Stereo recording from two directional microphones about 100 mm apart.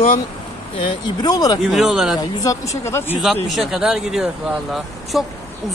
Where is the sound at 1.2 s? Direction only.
40° left (ahead or behind).